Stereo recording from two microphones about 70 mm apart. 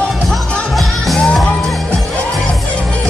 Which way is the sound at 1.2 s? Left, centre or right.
Centre.